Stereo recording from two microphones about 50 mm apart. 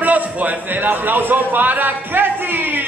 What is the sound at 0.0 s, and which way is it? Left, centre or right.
A man's voice, right.